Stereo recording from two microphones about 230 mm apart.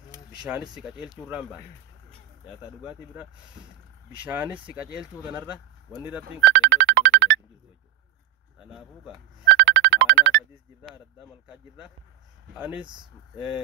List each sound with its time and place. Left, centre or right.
0.4 s speech: centre
2.8 s speech: centre
4.3 s speech: centre
6.4 s music: right
8.5 s speech: centre
9.5 s music: right
11.4 s speech: centre
12.8 s speech: centre